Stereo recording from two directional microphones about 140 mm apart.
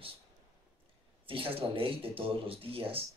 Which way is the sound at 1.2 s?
40° right (ahead or behind).